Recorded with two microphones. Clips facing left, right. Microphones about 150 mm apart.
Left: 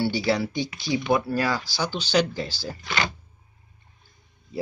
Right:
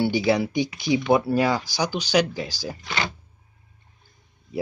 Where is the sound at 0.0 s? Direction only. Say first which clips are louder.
Right 3 dB; 20° right (ahead or behind).